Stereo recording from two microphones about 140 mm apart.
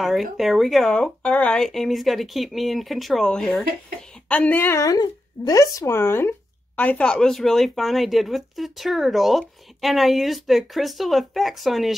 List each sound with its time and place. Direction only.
0.0 s speech: centre (ahead or behind)